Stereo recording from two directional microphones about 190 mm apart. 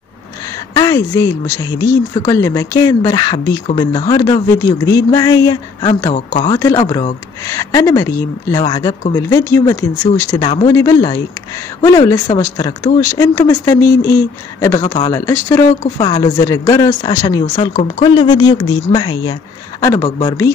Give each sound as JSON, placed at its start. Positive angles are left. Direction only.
{"t": 0.7, "sound": "speech", "side_deg": 20}